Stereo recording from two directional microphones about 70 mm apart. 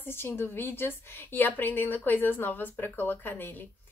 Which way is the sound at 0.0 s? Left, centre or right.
Left.